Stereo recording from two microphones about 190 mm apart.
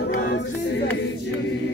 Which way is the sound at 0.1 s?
60° left (ahead or behind).